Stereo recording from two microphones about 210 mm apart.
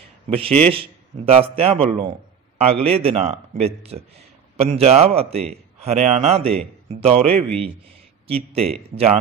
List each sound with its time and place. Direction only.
0.3 s a man's voice: 30° right (ahead or behind)
6.4 s a man's voice: 5° left (ahead or behind)
6.9 s a man's voice: 30° right (ahead or behind)
7.3 s a man's voice: 5° left (ahead or behind)
8.9 s a man's voice: 30° right (ahead or behind)